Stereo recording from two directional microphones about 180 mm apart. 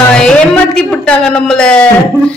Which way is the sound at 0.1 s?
5° left (ahead or behind).